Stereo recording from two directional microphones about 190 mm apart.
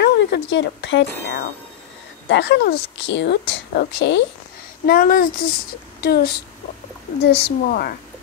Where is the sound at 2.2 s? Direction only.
70° left (ahead or behind).